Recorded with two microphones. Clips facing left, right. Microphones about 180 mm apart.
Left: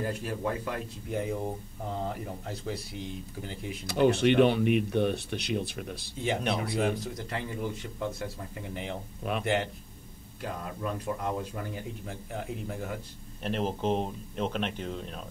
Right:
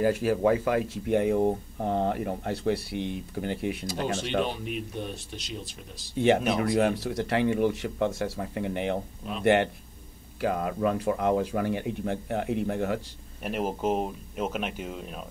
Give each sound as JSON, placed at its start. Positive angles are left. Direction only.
{"t": 0.0, "sound": "speech", "side_deg": -90}
{"t": 3.8, "sound": "speech", "side_deg": 65}
{"t": 6.1, "sound": "speech", "side_deg": -70}
{"t": 10.4, "sound": "speech", "side_deg": -90}
{"t": 13.4, "sound": "speech", "side_deg": -10}